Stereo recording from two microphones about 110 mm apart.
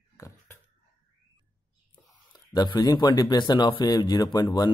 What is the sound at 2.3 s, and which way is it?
Speech, 40° left (ahead or behind).